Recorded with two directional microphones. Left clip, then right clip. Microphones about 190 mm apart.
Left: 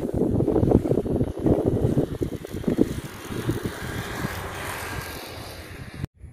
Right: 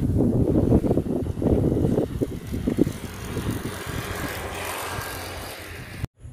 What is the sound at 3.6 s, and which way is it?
Vehicle, 55° right (ahead or behind).